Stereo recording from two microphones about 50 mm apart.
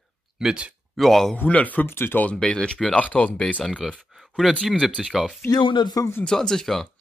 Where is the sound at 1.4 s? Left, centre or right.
Left.